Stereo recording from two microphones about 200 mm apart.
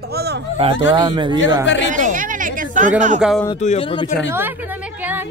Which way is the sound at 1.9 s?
40° right (ahead or behind).